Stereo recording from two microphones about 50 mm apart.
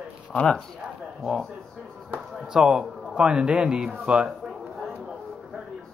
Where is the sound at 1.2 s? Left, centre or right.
Centre.